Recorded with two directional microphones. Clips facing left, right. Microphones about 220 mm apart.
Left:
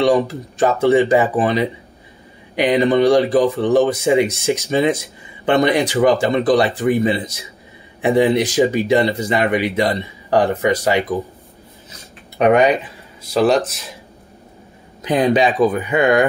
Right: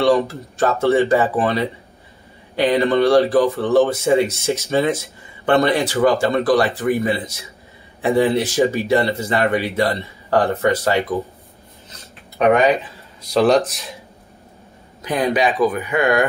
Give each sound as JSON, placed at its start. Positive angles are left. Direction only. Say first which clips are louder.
{"t": 0.0, "sound": "speech", "louder": "left 1 dB", "side_deg": 15}
{"t": 13.3, "sound": "speech", "louder": "even", "side_deg": 0}
{"t": 15.0, "sound": "speech", "louder": "left 4 dB", "side_deg": 20}